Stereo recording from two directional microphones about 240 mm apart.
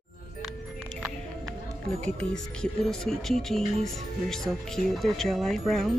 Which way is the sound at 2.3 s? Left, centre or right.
Centre.